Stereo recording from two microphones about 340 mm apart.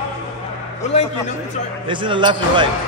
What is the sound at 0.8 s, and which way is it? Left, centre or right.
Speech, centre.